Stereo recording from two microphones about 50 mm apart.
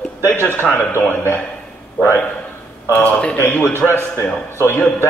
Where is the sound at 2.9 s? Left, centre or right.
Left.